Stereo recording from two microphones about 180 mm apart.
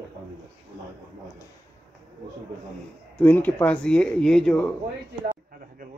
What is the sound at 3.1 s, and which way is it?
A man's voice, 10° left (ahead or behind).